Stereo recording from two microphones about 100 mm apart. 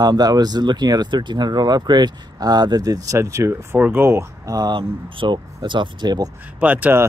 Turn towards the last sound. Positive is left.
turn(degrees=-20)  # may be behind; listen again after turning